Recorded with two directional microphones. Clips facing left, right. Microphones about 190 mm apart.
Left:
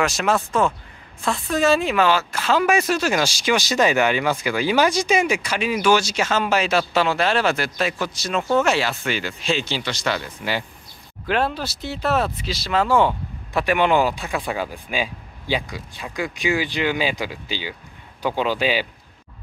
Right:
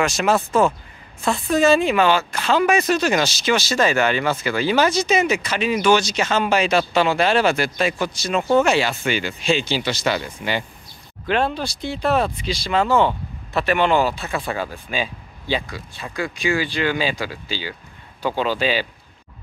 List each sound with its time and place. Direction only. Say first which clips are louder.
0.0 s speech: right 2 dB; centre (ahead or behind)